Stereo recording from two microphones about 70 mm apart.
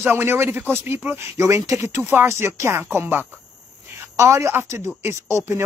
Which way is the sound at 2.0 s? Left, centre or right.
Right.